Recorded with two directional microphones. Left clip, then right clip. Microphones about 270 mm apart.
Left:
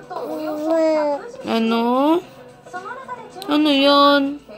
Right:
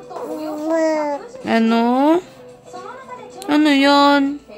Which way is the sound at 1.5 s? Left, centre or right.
Right.